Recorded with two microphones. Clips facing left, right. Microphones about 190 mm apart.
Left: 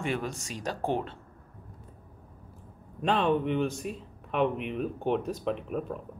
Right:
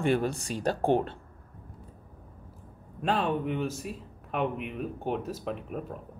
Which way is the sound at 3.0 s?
5° right (ahead or behind).